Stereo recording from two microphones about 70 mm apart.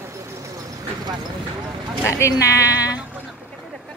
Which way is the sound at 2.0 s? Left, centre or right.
Left.